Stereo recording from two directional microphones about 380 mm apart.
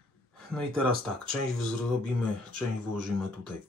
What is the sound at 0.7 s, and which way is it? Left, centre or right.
Speech, right.